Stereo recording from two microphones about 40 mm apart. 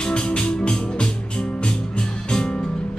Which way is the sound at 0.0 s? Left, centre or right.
Left.